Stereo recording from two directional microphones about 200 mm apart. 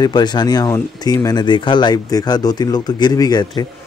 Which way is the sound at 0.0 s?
20° left (ahead or behind).